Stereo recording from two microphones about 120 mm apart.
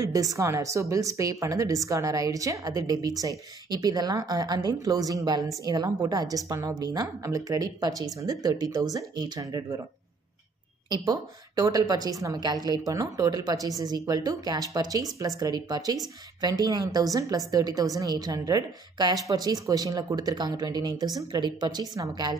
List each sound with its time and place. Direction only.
0.0 s a woman's voice: 30° right (ahead or behind)
10.9 s a woman's voice: 30° right (ahead or behind)